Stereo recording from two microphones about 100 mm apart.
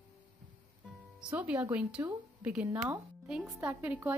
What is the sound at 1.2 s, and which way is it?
A woman's voice, 15° right (ahead or behind).